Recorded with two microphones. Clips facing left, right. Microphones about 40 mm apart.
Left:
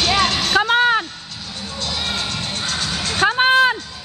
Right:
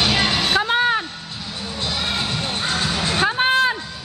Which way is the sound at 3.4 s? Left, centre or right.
Centre.